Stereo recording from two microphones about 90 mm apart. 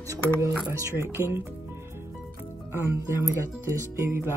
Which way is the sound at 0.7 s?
35° right (ahead or behind).